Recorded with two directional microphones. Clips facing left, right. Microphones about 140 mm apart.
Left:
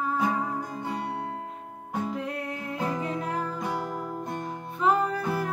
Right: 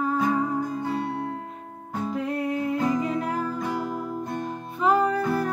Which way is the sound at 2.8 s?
Centre (ahead or behind).